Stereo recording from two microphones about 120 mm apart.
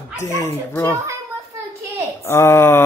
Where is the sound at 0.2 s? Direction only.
25° left (ahead or behind).